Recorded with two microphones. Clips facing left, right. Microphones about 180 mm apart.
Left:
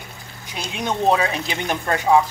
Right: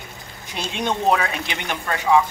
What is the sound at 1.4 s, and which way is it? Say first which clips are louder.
Speech: left 4 dB; 35° left (ahead or behind).